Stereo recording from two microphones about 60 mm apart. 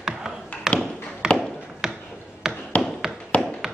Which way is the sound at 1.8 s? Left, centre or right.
Centre.